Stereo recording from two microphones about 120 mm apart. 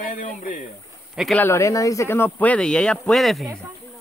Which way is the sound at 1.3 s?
20° left (ahead or behind).